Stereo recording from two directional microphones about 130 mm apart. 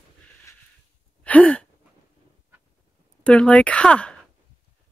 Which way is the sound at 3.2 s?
10° left (ahead or behind).